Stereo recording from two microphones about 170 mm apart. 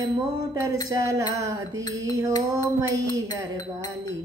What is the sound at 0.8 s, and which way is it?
Music, 20° right (ahead or behind).